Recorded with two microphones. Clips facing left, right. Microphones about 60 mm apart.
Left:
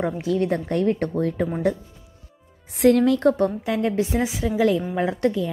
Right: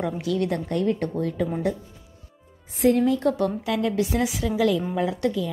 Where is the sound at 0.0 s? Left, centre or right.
Left.